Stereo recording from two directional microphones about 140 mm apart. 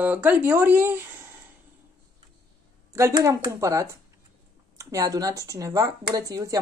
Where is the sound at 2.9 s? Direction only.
20° right (ahead or behind).